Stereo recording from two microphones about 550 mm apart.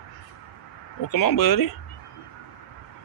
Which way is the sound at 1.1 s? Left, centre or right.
Left.